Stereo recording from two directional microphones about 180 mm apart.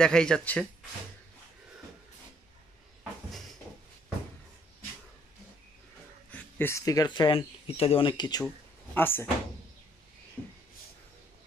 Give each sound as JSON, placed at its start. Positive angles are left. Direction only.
{"t": 0.0, "sound": "speech", "side_deg": 5}
{"t": 6.3, "sound": "speech", "side_deg": 15}
{"t": 8.9, "sound": "speech", "side_deg": 10}